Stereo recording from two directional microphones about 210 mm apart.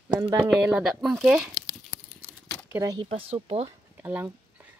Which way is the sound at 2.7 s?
15° right (ahead or behind).